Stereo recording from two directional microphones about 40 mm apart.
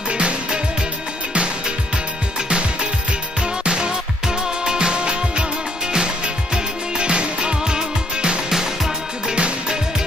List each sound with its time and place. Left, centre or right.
0.1 s music: right
3.6 s music: right